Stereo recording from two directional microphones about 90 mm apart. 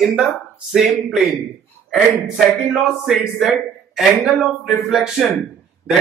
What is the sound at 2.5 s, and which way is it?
A man's voice, centre (ahead or behind).